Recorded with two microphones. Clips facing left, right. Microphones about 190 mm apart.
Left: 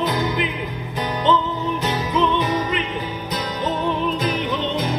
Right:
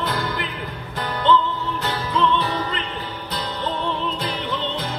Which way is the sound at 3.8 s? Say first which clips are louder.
Left 4 dB; 10° left (ahead or behind).